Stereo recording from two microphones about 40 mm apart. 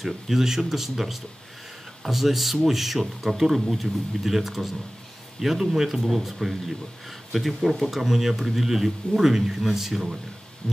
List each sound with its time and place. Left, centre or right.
0.0 s a man's voice: centre